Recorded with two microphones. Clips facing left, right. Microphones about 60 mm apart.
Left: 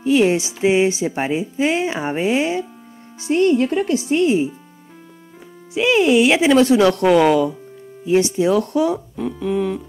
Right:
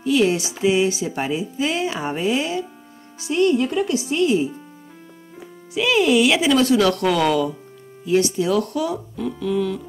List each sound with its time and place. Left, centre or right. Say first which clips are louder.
0.0 s music: left 3 dB; left
0.6 s speech: left 2 dB; left
5.8 s speech: left 2 dB; left